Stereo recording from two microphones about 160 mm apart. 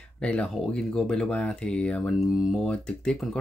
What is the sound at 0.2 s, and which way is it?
Speech, 5° left (ahead or behind).